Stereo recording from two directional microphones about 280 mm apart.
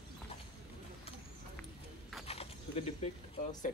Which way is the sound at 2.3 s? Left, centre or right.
Left.